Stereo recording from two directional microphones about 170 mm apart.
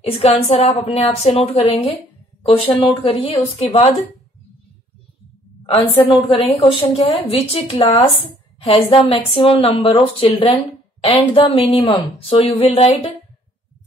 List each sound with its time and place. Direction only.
0.1 s a woman's voice: 35° left (ahead or behind)
5.7 s a woman's voice: 35° left (ahead or behind)